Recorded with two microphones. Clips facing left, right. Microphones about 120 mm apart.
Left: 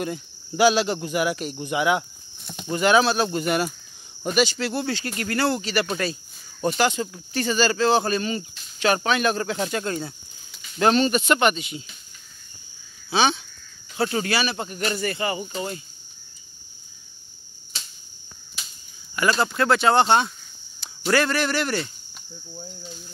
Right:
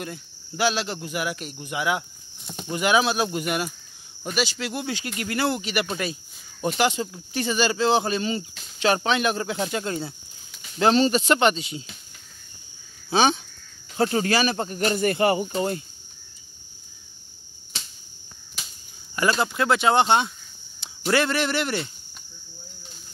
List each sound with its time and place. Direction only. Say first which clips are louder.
0.0 s speech: left 6 dB; 5° left (ahead or behind)
2.7 s speech: left 3 dB; 10° right (ahead or behind); by 11.8 s 30° right (ahead or behind)
13.1 s speech: right 1 dB; 40° right (ahead or behind)
15.0 s speech: right 6 dB; 50° right (ahead or behind)
19.4 s speech: left 3 dB; 15° right (ahead or behind)